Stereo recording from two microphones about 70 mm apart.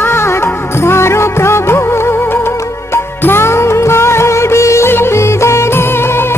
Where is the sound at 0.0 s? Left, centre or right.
Left.